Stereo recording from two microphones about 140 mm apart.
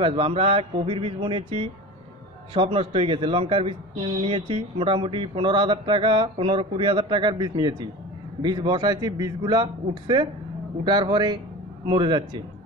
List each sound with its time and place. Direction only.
0.0 s a man's voice: 40° right (ahead or behind)